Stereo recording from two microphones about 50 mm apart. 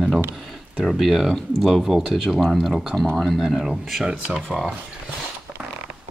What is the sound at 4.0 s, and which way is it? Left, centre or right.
Speech, centre.